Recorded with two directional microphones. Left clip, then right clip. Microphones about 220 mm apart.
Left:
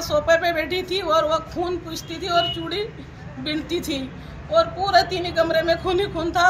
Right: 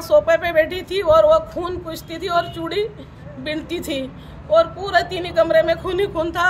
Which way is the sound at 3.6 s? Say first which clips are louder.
Even; 25° right (ahead or behind).